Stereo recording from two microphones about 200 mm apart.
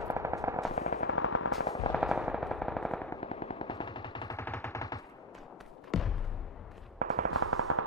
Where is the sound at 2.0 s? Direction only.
5° right (ahead or behind).